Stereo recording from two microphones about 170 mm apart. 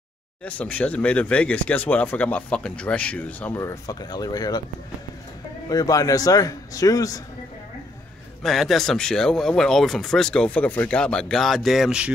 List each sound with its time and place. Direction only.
0.5 s speech: 10° left (ahead or behind); by 4.6 s 25° left (ahead or behind)
5.7 s speech: 20° left (ahead or behind)
8.4 s speech: centre (ahead or behind)